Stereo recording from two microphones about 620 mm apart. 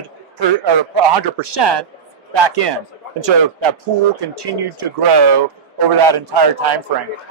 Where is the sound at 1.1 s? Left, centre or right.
Right.